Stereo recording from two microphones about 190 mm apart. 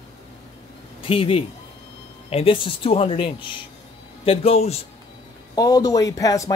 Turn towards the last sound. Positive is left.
turn(degrees=15)  # may be behind; listen again after turning